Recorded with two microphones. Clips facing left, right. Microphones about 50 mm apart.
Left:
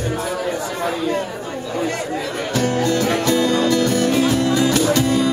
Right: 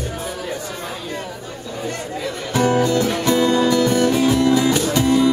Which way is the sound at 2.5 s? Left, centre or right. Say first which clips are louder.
Right 3 dB; centre.